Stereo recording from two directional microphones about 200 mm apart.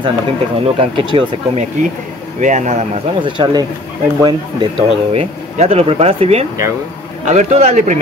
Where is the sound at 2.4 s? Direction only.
35° right (ahead or behind); by 3.7 s 20° right (ahead or behind).